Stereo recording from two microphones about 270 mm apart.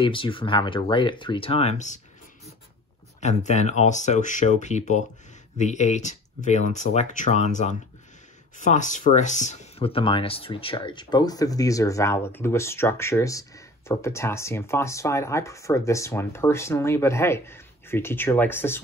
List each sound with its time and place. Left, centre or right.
0.0 s speech: centre
3.2 s speech: left; by 18.8 s centre